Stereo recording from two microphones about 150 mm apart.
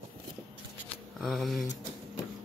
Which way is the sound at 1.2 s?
Centre (ahead or behind).